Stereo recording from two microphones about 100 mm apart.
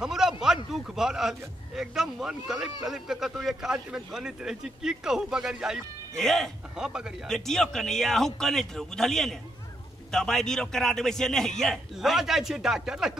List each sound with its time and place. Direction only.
0.0 s a sound: 5° right (ahead or behind)
0.7 s a man's voice: 5° right (ahead or behind)
7.2 s a man's voice: 5° left (ahead or behind)